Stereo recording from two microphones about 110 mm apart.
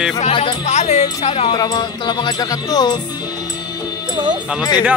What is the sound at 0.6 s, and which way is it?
Speech, 90° left.